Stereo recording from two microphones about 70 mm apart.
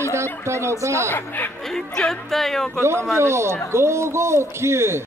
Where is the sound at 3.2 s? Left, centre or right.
Right.